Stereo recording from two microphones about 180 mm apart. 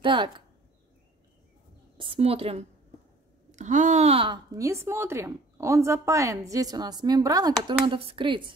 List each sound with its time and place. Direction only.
0.0 s speech: 25° right (ahead or behind)
2.0 s a woman's voice: 30° right (ahead or behind)